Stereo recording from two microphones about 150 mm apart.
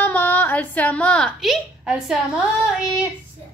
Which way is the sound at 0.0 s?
10° left (ahead or behind).